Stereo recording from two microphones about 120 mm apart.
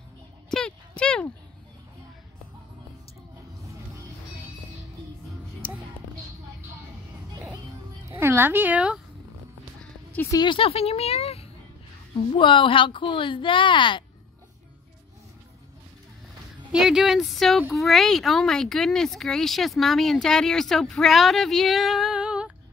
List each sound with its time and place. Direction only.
0.5 s a sound: 5° left (ahead or behind)
8.1 s speech: 20° right (ahead or behind)
10.3 s speech: 40° left (ahead or behind); by 11.4 s 55° left (ahead or behind)
12.3 s speech: 45° left (ahead or behind)
16.7 s speech: 5° right (ahead or behind)